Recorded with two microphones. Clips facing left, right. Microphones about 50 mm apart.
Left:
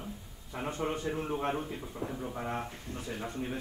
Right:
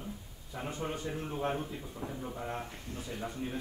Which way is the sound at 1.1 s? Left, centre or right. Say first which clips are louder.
Left 2 dB; left.